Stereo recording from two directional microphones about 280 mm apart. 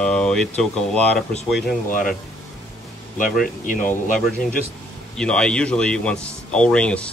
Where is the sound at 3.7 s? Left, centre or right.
Left.